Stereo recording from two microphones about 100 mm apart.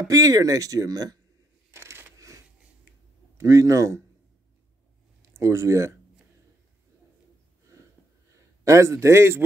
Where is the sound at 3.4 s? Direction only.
30° right (ahead or behind).